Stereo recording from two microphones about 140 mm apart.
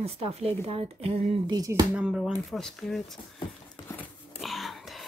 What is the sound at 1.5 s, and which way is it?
Speech, 25° right (ahead or behind).